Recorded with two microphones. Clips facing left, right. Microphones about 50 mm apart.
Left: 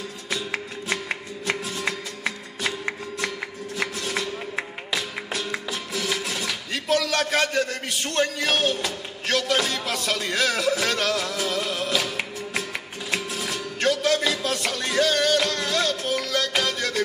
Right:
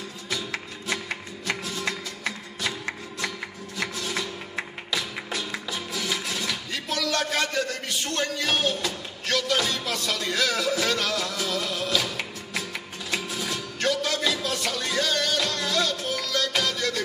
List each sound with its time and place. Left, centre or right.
0.3 s music: left
5.3 s music: left
6.0 s music: centre
6.4 s music: left
8.6 s speech: left
9.8 s music: centre
13.4 s music: left